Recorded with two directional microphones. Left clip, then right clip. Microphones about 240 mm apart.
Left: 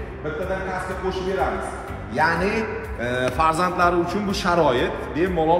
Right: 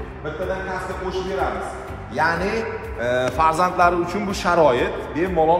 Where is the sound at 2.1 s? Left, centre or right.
Centre.